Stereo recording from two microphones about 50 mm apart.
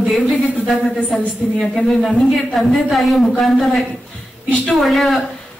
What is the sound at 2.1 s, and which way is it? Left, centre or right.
A woman's voice, centre.